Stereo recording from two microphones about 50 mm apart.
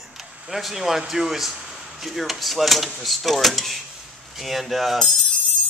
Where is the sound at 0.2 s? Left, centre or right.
Centre.